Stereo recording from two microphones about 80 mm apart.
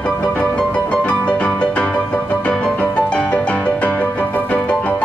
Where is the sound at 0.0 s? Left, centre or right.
Centre.